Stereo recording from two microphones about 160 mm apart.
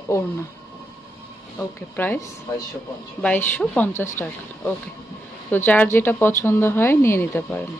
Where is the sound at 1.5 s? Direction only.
10° left (ahead or behind).